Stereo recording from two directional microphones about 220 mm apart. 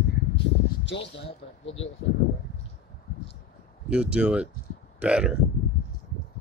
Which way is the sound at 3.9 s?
5° right (ahead or behind).